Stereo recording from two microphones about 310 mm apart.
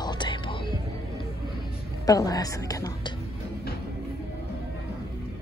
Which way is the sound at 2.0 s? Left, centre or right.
Centre.